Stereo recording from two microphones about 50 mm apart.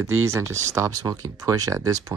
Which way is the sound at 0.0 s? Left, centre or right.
Right.